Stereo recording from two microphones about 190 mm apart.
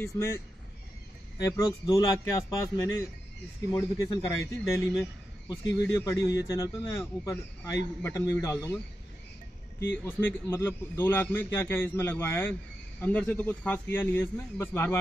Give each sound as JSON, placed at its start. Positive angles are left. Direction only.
{"t": 1.4, "sound": "a man's voice", "side_deg": 20}
{"t": 9.8, "sound": "a man's voice", "side_deg": 10}